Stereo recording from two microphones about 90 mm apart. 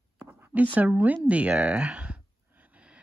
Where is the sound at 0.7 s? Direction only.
20° right (ahead or behind).